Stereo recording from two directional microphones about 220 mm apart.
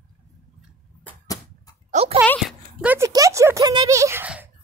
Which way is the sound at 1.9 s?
25° right (ahead or behind).